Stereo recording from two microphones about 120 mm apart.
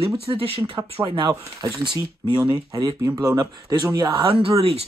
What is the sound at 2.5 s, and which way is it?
Speech, 40° right (ahead or behind).